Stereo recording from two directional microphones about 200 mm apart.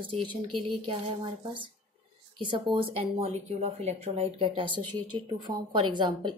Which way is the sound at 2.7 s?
30° right (ahead or behind).